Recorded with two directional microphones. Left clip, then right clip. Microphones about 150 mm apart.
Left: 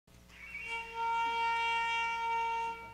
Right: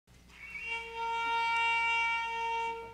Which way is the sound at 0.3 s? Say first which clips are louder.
Right 2 dB; 5° left (ahead or behind).